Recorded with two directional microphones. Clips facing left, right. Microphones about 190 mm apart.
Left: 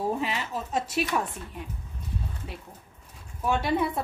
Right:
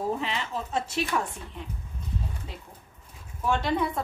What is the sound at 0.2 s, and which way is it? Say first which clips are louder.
Speech: left 1 dB; 10° left (ahead or behind).